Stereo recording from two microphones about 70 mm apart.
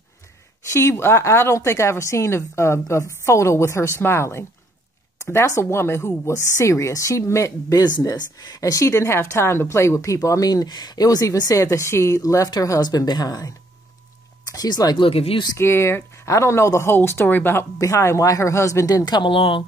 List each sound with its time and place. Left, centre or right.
0.7 s a woman's voice: left
8.1 s speech: left
11.5 s speech: left
12.8 s speech: left
14.4 s a sound: left
14.7 s speech: left
15.5 s a woman's voice: left
17.7 s speech: left
18.9 s speech: left